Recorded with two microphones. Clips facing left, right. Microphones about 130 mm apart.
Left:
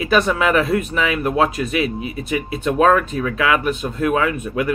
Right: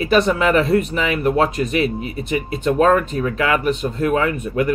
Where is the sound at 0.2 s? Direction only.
30° right (ahead or behind).